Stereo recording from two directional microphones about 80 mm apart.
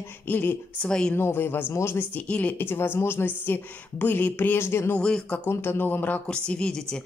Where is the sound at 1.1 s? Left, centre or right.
Left.